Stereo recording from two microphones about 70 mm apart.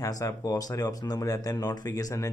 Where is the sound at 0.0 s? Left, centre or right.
Left.